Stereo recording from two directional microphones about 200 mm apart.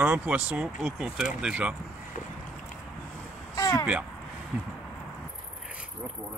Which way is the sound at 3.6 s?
15° left (ahead or behind).